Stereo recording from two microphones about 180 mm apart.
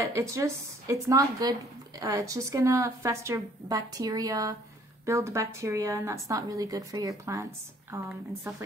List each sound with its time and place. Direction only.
0.0 s a woman's voice: 15° right (ahead or behind)